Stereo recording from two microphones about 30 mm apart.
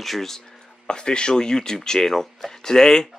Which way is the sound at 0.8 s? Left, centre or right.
Left.